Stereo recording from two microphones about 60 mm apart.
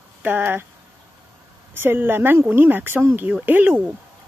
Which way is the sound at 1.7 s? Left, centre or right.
Right.